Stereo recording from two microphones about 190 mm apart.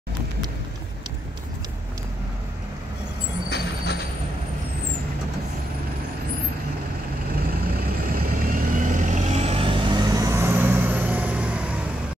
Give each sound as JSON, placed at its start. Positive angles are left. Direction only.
{"t": 3.4, "sound": "vehicle", "side_deg": 60}
{"t": 7.6, "sound": "vehicle", "side_deg": -50}